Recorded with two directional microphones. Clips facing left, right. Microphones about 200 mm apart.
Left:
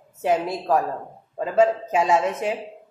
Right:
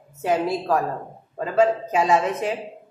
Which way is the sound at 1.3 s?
25° left (ahead or behind).